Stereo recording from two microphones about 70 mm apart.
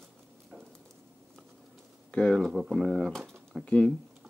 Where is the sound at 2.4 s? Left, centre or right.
Centre.